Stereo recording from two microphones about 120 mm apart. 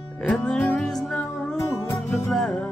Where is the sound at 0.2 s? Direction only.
5° left (ahead or behind).